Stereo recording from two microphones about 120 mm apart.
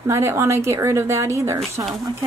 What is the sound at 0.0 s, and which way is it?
Speech, 20° right (ahead or behind).